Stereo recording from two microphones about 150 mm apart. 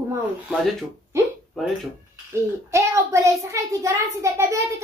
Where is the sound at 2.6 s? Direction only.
20° right (ahead or behind).